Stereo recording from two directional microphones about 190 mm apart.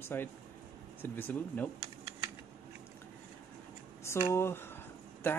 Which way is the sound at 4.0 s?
15° left (ahead or behind).